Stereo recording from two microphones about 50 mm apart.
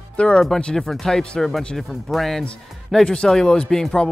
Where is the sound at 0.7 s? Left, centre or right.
Centre.